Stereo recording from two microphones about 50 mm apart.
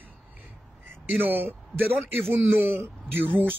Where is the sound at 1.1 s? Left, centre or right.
Right.